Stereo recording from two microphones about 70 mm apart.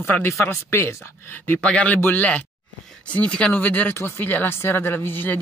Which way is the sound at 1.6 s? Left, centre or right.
Centre.